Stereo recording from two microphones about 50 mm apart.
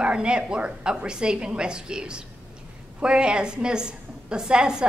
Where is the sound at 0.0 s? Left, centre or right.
Right.